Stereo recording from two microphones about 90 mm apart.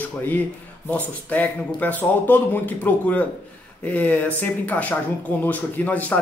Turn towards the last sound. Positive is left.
turn(degrees=15)  # may be behind; listen again after turning